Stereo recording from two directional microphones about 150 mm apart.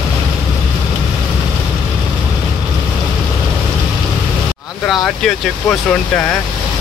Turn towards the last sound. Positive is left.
turn(degrees=5)  # may be behind; listen again after turning